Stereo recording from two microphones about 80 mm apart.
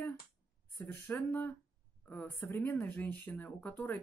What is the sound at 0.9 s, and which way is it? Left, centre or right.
Speech, left.